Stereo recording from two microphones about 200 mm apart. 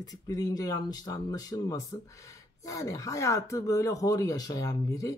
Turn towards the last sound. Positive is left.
turn(degrees=15)  # may be behind; listen again after turning